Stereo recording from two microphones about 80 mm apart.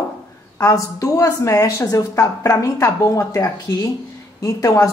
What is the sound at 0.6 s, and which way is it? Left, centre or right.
A woman's voice, left.